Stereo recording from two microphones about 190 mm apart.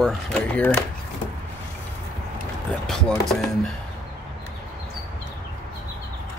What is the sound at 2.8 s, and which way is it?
Speech, centre (ahead or behind).